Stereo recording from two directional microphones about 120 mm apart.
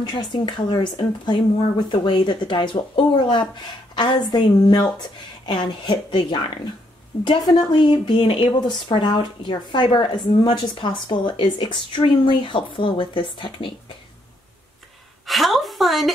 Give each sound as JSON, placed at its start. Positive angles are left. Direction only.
{"t": 0.1, "sound": "speech", "side_deg": 40}
{"t": 7.1, "sound": "a woman's voice", "side_deg": 50}
{"t": 15.2, "sound": "a sound", "side_deg": 0}